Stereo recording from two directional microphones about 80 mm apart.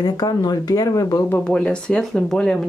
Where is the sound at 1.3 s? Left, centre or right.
Centre.